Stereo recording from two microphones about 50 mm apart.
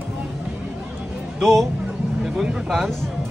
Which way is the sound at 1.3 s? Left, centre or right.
Centre.